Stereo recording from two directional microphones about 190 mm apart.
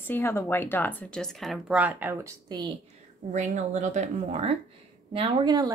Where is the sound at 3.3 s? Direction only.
40° right (ahead or behind); by 5.7 s 20° right (ahead or behind).